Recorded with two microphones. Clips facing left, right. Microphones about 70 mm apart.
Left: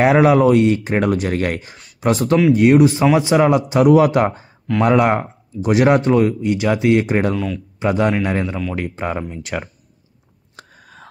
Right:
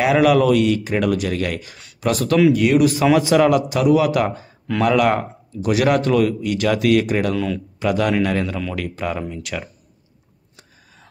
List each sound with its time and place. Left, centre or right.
0.0 s speech: left
3.8 s speech: left
7.3 s speech: centre
7.8 s speech: left
10.5 s a sound: left